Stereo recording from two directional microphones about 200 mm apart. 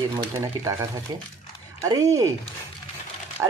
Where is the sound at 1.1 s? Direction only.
20° right (ahead or behind).